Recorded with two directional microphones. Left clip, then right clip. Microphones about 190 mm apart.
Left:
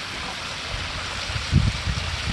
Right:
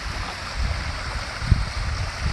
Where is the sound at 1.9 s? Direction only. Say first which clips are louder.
Left 3 dB; 15° left (ahead or behind).